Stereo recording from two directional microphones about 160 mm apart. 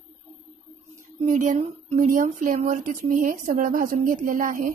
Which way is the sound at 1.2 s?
55° right (ahead or behind).